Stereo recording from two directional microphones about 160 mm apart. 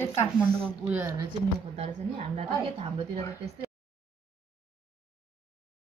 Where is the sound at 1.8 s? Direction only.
40° right (ahead or behind).